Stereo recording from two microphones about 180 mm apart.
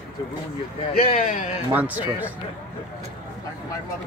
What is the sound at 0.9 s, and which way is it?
Speech, 50° left (ahead or behind).